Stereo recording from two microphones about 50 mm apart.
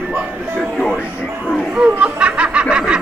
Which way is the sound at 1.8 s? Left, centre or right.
Right.